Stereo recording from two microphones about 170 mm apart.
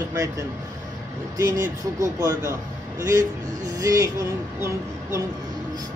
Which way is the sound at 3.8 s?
20° right (ahead or behind).